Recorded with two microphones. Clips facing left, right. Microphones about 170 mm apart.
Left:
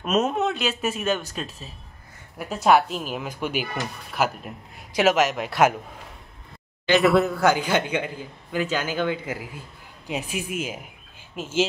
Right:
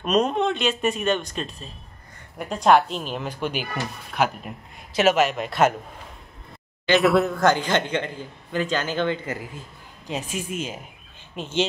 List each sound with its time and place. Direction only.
0.0 s a man's voice: 5° left (ahead or behind)
7.0 s a man's voice: centre (ahead or behind)